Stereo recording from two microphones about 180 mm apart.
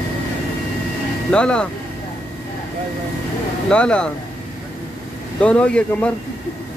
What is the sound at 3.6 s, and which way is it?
Speech, 5° left (ahead or behind).